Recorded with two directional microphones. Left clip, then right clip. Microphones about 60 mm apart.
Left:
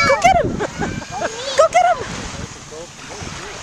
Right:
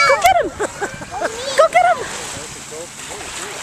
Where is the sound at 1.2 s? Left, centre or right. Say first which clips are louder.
Right 1 dB; right.